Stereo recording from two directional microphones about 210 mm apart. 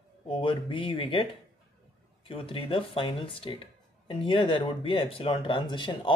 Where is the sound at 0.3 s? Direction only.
25° left (ahead or behind).